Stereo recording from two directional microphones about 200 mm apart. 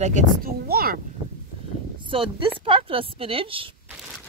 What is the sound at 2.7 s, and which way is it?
Speech, 25° right (ahead or behind).